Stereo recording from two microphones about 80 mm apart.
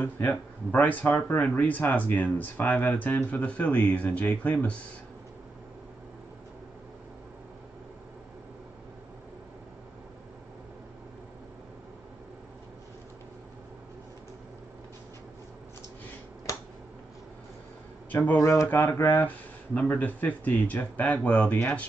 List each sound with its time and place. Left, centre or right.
0.0 s speech: left
18.4 s speech: left